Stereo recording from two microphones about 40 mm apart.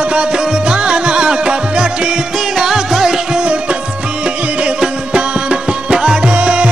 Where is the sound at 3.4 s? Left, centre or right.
Right.